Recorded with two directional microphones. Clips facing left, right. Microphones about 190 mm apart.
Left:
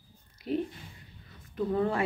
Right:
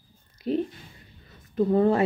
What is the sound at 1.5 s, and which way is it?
Speech, 35° right (ahead or behind).